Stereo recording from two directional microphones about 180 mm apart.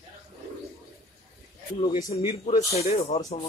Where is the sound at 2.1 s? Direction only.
35° left (ahead or behind).